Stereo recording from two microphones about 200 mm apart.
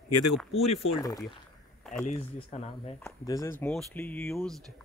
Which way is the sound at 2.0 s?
35° left (ahead or behind).